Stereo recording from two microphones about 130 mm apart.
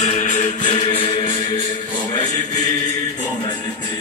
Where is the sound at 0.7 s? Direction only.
45° left (ahead or behind).